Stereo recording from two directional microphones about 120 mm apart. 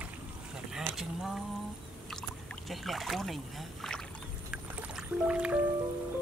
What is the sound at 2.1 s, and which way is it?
Rowboat, centre (ahead or behind).